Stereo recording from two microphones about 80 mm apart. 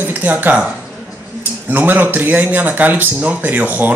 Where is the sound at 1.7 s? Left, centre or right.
Right.